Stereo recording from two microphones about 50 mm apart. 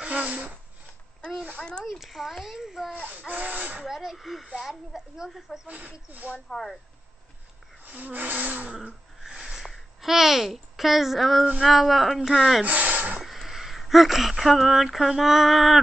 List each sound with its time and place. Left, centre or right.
0.0 s speech: right
1.6 s speech: centre
1.9 s a child's voice: centre
2.9 s speech: right
3.8 s a child's voice: centre
5.7 s speech: right
6.5 s speech: centre
7.8 s speech: right
9.2 s a sound: centre
10.0 s a child's voice: centre
12.6 s a sound: right
13.2 s speech: centre